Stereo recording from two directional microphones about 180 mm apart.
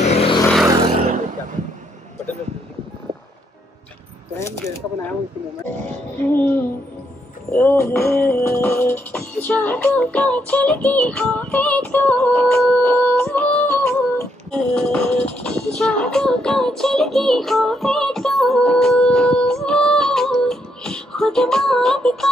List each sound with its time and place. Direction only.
0.0 s vehicle: 35° left (ahead or behind)
0.7 s a sound: 30° right (ahead or behind)
4.4 s speech: 15° left (ahead or behind)
6.1 s speech: 10° left (ahead or behind)
7.5 s speech: 10° left (ahead or behind)
7.9 s music: 15° left (ahead or behind)